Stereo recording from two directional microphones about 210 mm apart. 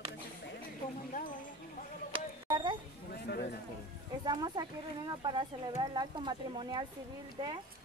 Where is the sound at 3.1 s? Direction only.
50° left (ahead or behind).